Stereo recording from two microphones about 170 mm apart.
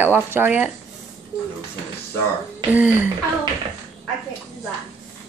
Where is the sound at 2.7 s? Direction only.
10° right (ahead or behind).